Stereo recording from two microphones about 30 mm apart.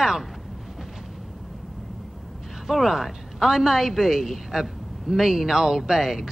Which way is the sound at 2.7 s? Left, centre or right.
Centre.